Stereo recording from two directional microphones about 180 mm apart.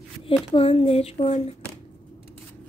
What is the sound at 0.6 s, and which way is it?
Speech, 30° left (ahead or behind).